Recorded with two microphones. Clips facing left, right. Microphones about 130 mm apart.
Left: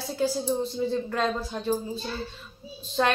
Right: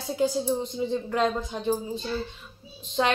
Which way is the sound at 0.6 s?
15° right (ahead or behind).